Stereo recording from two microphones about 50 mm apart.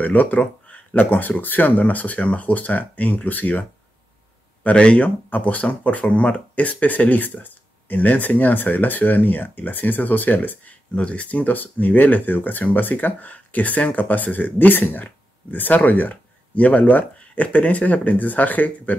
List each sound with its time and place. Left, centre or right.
0.0 s speech: left
4.6 s speech: left
11.0 s speech: left